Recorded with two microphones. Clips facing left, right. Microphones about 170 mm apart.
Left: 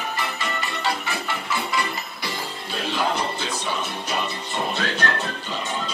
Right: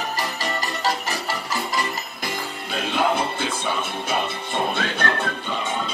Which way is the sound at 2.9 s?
55° right (ahead or behind).